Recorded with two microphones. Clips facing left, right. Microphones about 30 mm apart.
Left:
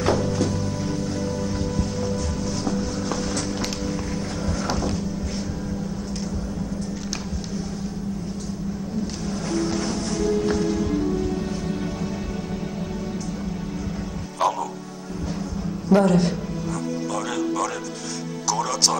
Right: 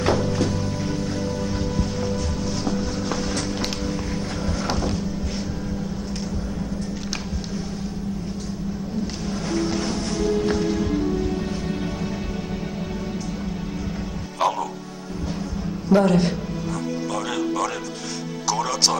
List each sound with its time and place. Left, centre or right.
0.0 s music: centre
1.8 s music: centre
4.6 s a sound: centre
9.5 s music: centre
14.4 s music: right
15.9 s a man's voice: centre
17.1 s music: centre